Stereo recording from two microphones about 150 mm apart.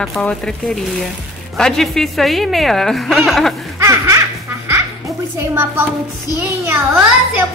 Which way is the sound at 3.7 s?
20° right (ahead or behind).